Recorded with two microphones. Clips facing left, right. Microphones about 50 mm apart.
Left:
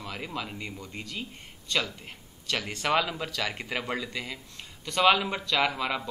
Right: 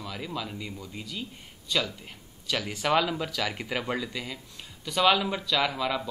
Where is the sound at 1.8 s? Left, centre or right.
Centre.